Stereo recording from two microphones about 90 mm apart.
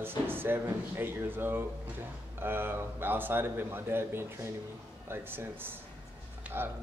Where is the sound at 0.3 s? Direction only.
25° right (ahead or behind).